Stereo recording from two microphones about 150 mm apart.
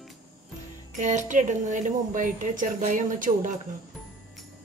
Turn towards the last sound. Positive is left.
turn(degrees=-60)  # may be behind; listen again after turning